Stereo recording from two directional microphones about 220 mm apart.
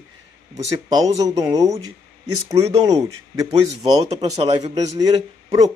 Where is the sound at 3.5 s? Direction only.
30° right (ahead or behind).